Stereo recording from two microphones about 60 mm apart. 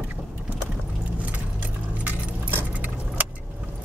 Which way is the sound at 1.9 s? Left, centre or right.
Right.